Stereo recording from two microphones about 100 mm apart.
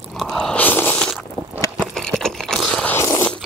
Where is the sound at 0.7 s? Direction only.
20° left (ahead or behind).